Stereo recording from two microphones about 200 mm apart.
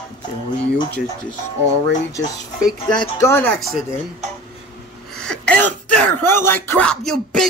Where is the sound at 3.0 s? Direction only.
10° left (ahead or behind).